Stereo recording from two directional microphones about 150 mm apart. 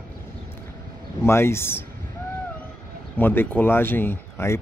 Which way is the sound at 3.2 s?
15° left (ahead or behind).